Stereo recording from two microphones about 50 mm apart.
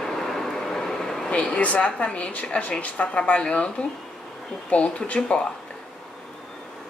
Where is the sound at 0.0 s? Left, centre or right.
Centre.